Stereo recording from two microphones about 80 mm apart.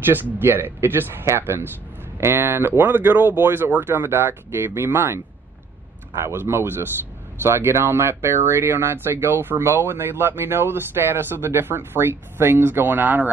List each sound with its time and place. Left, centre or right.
0.1 s speech: right